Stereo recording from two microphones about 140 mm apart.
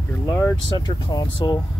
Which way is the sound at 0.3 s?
20° left (ahead or behind).